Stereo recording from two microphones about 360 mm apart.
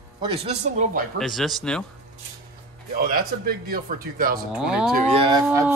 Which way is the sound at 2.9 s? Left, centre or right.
Right.